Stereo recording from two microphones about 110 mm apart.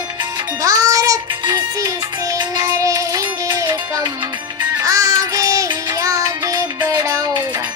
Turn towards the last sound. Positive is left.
turn(degrees=-30)  # may be behind; listen again after turning